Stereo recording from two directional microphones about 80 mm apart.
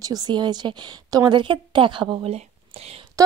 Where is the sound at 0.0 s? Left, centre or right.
Right.